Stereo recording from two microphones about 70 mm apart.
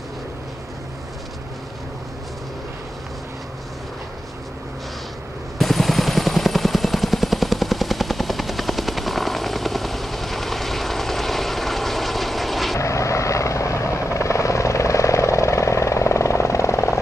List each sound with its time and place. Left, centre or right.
5.6 s helicopter: centre
12.7 s helicopter: left